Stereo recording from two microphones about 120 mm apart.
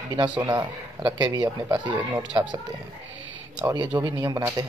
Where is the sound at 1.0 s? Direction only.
40° right (ahead or behind).